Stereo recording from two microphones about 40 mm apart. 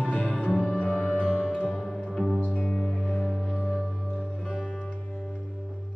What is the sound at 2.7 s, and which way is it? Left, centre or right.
Music, centre.